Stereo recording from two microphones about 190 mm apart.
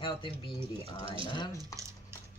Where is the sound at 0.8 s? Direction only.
30° right (ahead or behind).